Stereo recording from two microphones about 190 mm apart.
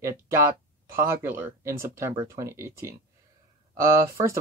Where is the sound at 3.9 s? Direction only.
15° right (ahead or behind).